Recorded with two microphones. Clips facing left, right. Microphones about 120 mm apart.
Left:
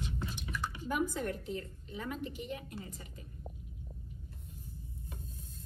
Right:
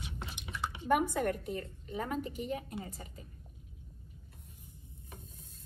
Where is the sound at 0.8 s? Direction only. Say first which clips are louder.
Right 5 dB; 60° right (ahead or behind); by 2.8 s 40° right (ahead or behind).